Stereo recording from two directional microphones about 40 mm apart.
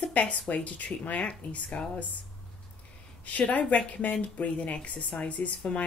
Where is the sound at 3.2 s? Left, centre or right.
Left.